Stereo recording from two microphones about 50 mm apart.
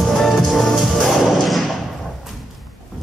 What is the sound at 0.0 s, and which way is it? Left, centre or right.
Music, centre.